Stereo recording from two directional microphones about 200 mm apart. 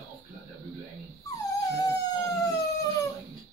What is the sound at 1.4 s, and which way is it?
Dog, 15° left (ahead or behind).